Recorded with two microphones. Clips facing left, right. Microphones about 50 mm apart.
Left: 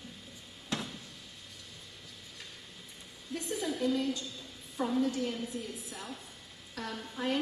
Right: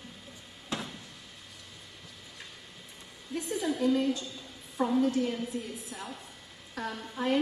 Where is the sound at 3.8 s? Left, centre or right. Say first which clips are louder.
Right 5 dB; centre.